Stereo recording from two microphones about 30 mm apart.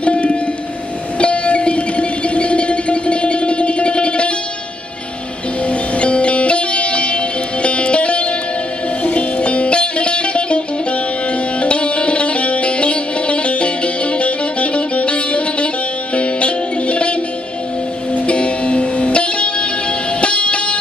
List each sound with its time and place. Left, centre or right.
0.0 s music: left
5.7 s music: left